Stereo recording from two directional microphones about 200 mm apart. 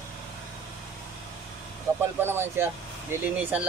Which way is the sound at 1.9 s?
15° right (ahead or behind).